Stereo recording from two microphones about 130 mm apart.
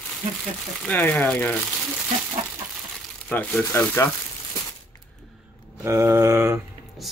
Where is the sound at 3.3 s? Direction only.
15° left (ahead or behind).